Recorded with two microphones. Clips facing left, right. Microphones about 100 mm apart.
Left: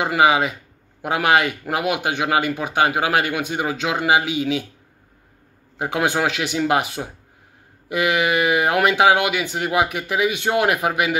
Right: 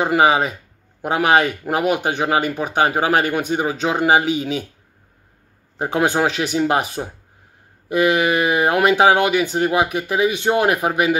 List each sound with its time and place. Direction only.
0.0 s speech: 35° right (ahead or behind)
5.8 s speech: 35° right (ahead or behind)